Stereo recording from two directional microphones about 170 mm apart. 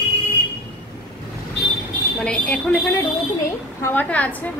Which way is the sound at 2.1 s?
5° left (ahead or behind).